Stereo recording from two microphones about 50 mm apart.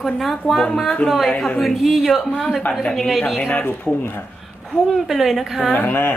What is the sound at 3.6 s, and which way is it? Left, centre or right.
Speech, left.